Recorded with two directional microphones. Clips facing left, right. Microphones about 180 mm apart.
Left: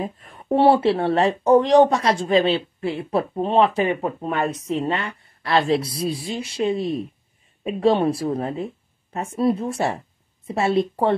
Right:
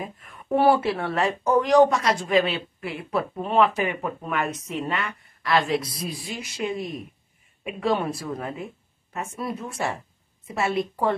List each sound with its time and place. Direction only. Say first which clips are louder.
0.0 s speech: left 6 dB; 30° left (ahead or behind)